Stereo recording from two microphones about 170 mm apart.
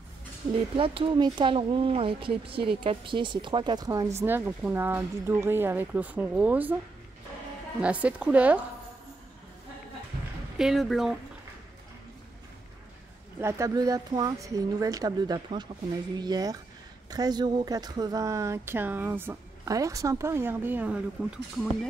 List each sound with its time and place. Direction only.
0.5 s speech: 30° right (ahead or behind); by 6.7 s 10° right (ahead or behind)
7.8 s speech: 10° right (ahead or behind)
10.6 s speech: centre (ahead or behind)
13.4 s speech: 15° right (ahead or behind)